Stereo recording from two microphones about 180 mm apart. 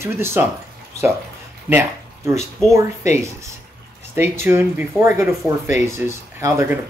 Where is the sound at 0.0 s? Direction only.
15° right (ahead or behind).